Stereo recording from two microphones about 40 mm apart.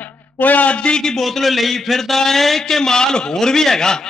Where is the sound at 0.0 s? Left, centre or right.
Left.